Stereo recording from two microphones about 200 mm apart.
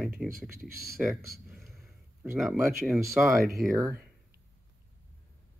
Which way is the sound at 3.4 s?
Centre (ahead or behind).